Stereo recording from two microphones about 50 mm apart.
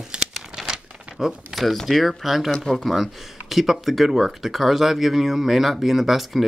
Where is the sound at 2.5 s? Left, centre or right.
Centre.